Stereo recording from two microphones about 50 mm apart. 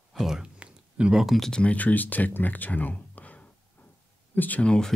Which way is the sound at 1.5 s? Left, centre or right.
Left.